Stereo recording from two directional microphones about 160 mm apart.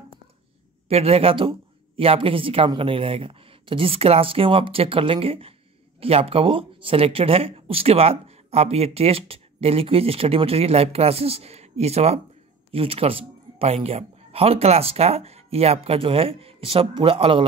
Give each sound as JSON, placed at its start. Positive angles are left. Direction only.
{"t": 0.8, "sound": "speech", "side_deg": -40}